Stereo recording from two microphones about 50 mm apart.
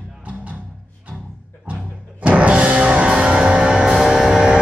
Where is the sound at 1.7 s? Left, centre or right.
Right.